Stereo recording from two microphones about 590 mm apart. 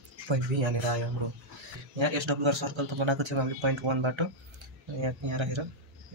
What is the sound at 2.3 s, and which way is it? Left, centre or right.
Speech, right.